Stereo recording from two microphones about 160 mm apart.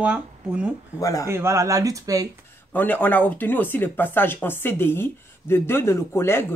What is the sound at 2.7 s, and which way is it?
Speech, 10° left (ahead or behind).